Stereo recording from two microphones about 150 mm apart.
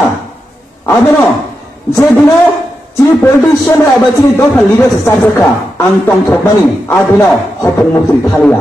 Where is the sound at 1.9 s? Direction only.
15° left (ahead or behind).